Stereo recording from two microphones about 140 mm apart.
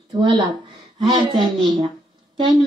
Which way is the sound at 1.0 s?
30° right (ahead or behind).